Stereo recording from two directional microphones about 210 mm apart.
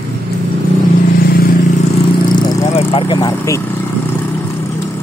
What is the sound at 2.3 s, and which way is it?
Vehicle, 20° left (ahead or behind).